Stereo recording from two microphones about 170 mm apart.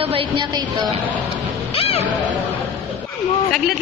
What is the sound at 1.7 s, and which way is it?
Music, 35° left (ahead or behind).